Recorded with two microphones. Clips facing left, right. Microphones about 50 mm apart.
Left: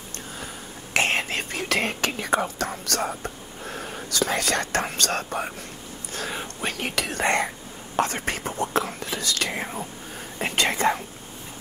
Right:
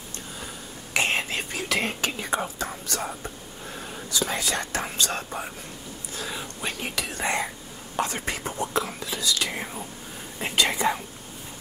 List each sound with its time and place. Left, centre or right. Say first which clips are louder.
0.9 s whispering: left 2 dB; left
3.2 s speech: left 3 dB; left